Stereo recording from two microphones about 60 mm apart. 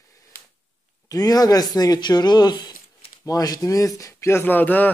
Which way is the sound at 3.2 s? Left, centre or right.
Left.